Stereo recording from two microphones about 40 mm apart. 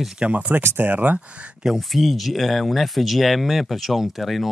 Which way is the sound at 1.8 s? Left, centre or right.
Centre.